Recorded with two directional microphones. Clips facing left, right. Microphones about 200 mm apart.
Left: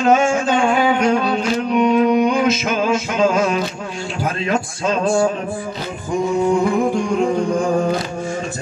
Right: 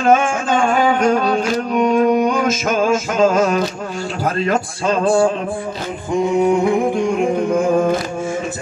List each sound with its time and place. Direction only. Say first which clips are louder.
0.1 s music: right 1 dB; 45° right (ahead or behind)
4.2 s speech: right 2 dB; 40° right (ahead or behind)
6.3 s music: right 1 dB; 20° right (ahead or behind)